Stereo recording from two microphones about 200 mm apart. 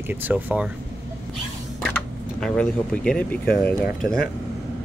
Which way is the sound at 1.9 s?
5° left (ahead or behind).